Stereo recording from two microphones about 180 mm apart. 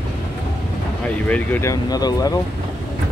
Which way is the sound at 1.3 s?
10° left (ahead or behind).